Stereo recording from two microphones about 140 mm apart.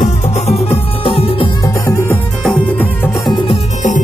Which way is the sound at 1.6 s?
25° left (ahead or behind).